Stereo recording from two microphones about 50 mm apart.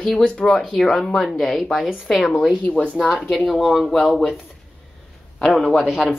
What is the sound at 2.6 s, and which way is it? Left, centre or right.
Speech, left.